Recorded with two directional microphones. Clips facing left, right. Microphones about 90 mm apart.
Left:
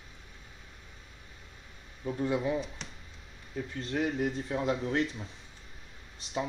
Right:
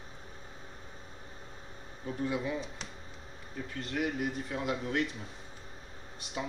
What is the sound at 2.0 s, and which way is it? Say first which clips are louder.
Speech: left 3 dB; 25° left (ahead or behind).